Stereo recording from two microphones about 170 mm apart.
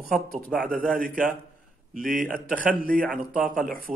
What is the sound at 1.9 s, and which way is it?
Speech, 50° right (ahead or behind).